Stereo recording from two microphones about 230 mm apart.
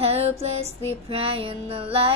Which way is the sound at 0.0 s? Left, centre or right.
Right.